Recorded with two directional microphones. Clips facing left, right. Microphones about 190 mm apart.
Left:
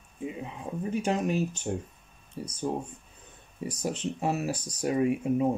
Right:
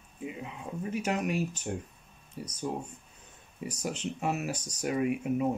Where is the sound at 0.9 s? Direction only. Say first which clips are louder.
Left 3 dB; 30° left (ahead or behind).